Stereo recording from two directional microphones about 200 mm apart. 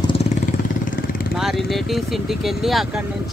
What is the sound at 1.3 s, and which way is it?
Speech, centre (ahead or behind).